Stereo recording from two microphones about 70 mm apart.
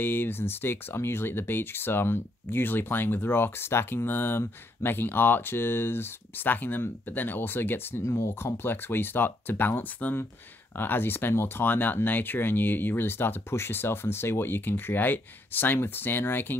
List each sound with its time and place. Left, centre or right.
0.0 s speech: left
8.0 s speech: left